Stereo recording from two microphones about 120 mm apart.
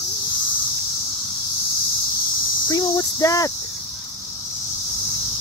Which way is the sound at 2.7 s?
30° left (ahead or behind).